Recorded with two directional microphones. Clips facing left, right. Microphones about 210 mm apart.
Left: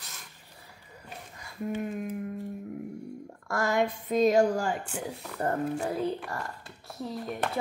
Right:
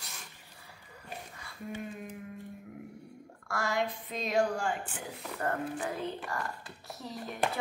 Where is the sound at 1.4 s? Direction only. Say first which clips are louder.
Left 9 dB; 55° left (ahead or behind).